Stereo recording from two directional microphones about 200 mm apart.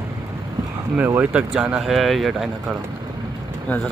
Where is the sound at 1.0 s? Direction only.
10° right (ahead or behind).